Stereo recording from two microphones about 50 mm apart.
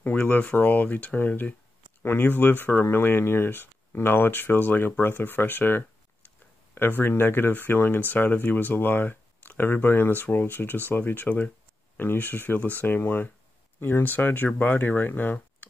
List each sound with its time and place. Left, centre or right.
0.0 s speech: left